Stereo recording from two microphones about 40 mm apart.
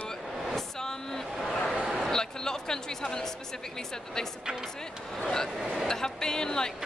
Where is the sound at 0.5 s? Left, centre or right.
Centre.